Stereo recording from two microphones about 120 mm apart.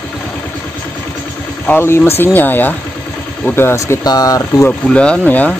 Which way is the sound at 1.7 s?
20° left (ahead or behind).